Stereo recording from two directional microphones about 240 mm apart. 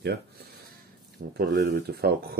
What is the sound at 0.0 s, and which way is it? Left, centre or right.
Speech, right.